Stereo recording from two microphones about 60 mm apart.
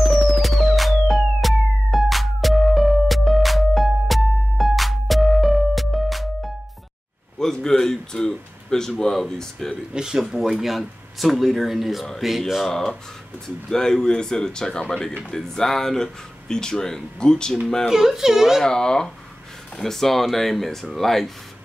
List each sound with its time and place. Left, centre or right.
0.0 s music: centre
7.3 s a sound: centre
9.9 s speech: centre
17.8 s speech: centre
18.6 s speech: centre